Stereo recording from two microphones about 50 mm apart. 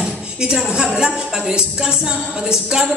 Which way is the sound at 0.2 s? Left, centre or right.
Centre.